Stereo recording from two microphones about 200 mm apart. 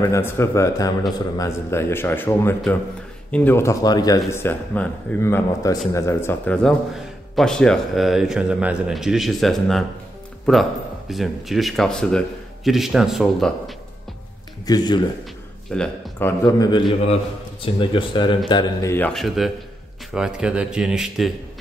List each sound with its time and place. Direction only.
0.0 s a man's voice: 15° left (ahead or behind)
14.7 s a man's voice: 20° left (ahead or behind)
15.7 s a man's voice: 5° left (ahead or behind)